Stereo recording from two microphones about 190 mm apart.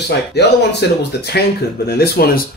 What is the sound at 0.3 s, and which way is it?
Speech, 60° left (ahead or behind).